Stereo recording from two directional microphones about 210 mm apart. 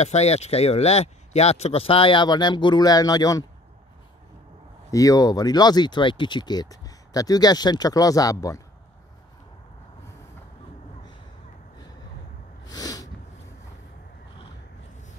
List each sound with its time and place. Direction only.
0.0 s speech: 30° left (ahead or behind)
4.9 s speech: 15° left (ahead or behind)
12.6 s snort: 15° left (ahead or behind)